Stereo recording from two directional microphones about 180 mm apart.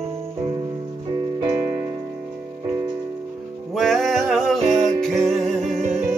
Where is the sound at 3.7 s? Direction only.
Centre (ahead or behind).